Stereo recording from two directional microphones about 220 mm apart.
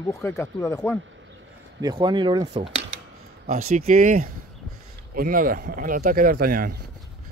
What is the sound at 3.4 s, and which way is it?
Speech, 35° right (ahead or behind).